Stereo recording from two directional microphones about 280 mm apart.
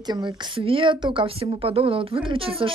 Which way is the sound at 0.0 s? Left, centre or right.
Centre.